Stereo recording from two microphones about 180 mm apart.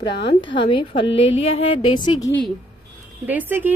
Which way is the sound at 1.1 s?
30° left (ahead or behind).